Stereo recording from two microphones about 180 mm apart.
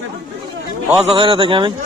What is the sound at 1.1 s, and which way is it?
Speech, 30° right (ahead or behind).